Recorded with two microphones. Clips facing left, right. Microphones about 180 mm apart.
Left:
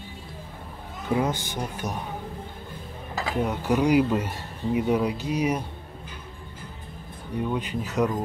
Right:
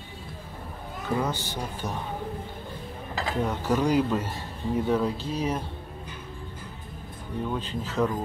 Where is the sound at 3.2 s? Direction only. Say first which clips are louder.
Left 1 dB; 10° left (ahead or behind).